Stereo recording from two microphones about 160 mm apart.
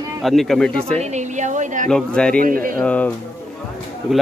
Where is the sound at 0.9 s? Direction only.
45° right (ahead or behind).